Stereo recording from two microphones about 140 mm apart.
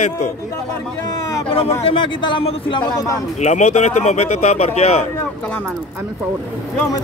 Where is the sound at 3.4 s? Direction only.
55° left (ahead or behind).